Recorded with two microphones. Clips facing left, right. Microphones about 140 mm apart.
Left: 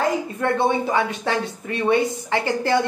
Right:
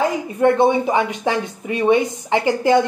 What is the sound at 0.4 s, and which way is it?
Speech, 15° right (ahead or behind).